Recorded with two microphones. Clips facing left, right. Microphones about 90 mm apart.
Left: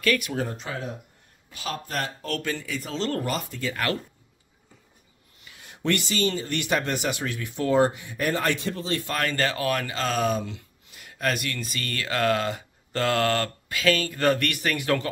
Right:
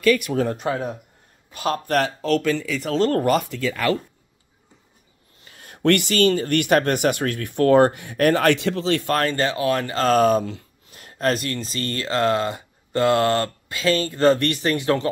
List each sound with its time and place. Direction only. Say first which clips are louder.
0.6 s speech: right 8 dB; 50° right (ahead or behind)
2.0 s speech: right 10 dB; 90° right
3.0 s speech: right 9 dB; 45° right (ahead or behind)
5.4 s speech: right 9 dB; 45° right (ahead or behind); by 9.1 s 85° right
9.3 s speech: right 4 dB; 20° right (ahead or behind)
9.8 s speech: right 8 dB; 40° right (ahead or behind); by 15.0 s 25° right (ahead or behind)